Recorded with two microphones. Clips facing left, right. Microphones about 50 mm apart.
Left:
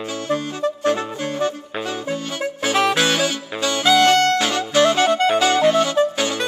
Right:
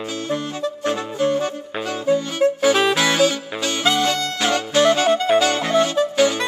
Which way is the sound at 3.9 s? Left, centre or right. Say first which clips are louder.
Left 7 dB; left.